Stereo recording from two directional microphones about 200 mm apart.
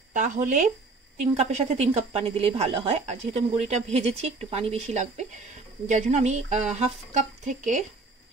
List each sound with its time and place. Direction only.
0.1 s a woman's voice: 40° right (ahead or behind)